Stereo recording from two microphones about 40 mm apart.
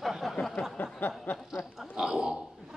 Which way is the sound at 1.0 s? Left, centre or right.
Left.